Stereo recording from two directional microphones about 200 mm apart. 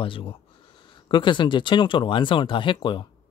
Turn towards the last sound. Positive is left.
turn(degrees=25)  # may be behind; listen again after turning